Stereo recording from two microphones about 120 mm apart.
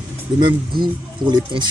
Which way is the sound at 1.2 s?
40° right (ahead or behind).